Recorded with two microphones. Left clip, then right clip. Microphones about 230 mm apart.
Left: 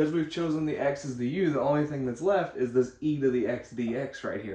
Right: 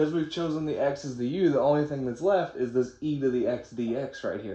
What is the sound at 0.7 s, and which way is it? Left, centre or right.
Speech, right.